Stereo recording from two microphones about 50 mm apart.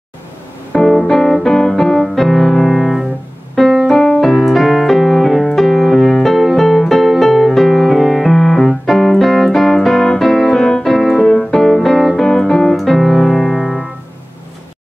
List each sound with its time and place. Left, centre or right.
0.7 s music: centre
1.1 s music: centre
2.0 s piano: centre
4.2 s keyboard: centre
5.6 s piano: centre
8.8 s keyboard: centre
11.5 s music: centre
12.2 s keyboard: centre